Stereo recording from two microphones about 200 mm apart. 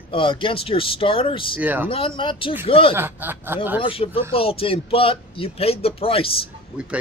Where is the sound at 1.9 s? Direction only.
25° left (ahead or behind).